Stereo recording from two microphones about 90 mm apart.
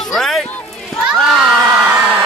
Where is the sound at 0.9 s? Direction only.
5° left (ahead or behind).